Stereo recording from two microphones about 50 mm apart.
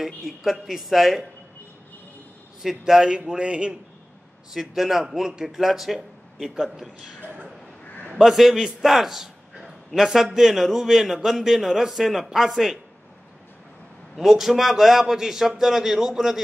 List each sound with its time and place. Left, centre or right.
0.0 s a man's voice: centre
2.6 s a man's voice: centre
4.6 s a man's voice: centre
7.2 s speech: right
8.1 s a man's voice: centre
14.1 s a man's voice: centre